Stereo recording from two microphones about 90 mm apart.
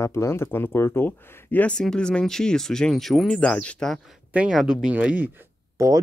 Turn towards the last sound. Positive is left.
turn(degrees=-40)  # may be behind; listen again after turning